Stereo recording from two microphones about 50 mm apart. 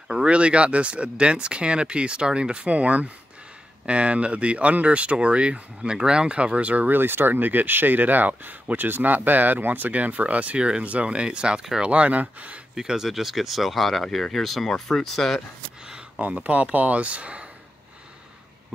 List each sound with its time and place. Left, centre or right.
0.1 s speech: right
6.9 s speech: right
12.7 s speech: centre
16.2 s speech: right